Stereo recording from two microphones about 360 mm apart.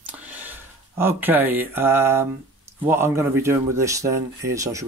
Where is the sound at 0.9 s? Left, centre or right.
Centre.